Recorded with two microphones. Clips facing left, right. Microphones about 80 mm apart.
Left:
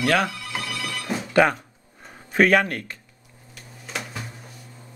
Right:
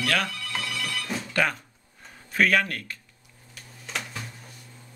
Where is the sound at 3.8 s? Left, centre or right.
Centre.